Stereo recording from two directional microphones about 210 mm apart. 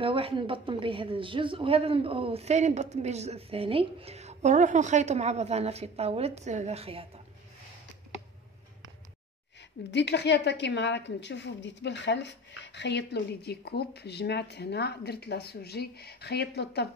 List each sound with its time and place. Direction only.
0.0 s a woman's voice: 25° right (ahead or behind)
9.6 s a woman's voice: 55° left (ahead or behind)